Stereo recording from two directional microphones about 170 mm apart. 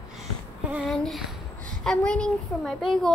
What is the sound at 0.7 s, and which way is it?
A woman's voice, centre (ahead or behind).